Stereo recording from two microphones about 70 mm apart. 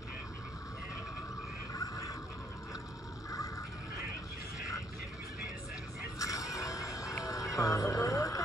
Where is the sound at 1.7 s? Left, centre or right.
Left.